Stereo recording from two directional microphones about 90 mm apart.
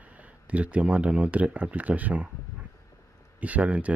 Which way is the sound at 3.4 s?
15° right (ahead or behind).